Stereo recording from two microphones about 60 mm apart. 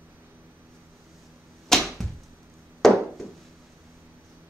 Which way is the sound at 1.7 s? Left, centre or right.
Centre.